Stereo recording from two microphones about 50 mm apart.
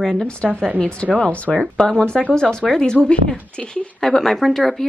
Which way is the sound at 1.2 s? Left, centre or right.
Left.